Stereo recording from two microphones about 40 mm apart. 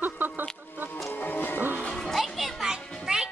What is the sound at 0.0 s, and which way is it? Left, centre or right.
Chicken, right.